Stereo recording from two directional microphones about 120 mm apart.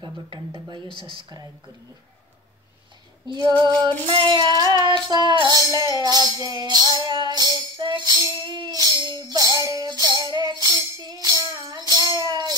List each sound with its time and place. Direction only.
0.8 s speech: 35° left (ahead or behind)
1.1 s music: 35° right (ahead or behind)
3.3 s music: 40° right (ahead or behind)